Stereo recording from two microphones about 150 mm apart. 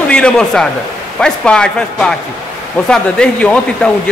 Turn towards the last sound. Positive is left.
turn(degrees=5)  # may be behind; listen again after turning